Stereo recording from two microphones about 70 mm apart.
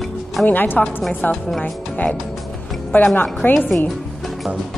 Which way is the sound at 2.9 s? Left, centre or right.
Left.